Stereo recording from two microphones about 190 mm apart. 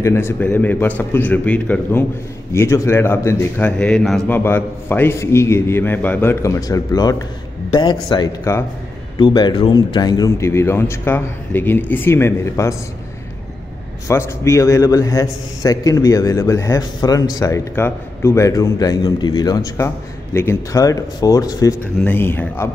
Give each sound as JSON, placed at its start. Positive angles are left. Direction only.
{"t": 0.0, "sound": "a man's voice", "side_deg": 15}
{"t": 14.0, "sound": "a man's voice", "side_deg": 15}